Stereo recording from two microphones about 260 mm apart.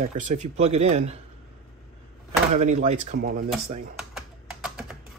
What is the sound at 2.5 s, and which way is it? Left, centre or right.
Speech, right.